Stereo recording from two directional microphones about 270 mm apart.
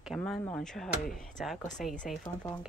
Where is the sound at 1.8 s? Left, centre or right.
Left.